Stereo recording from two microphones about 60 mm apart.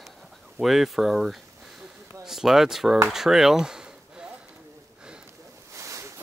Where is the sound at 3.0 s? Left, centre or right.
Centre.